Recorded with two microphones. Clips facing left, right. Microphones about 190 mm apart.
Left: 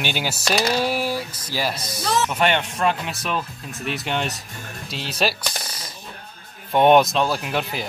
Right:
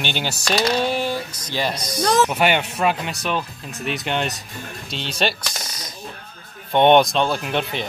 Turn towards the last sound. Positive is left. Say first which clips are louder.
# right 2 dB
turn(degrees=0)  # may be behind; listen again after turning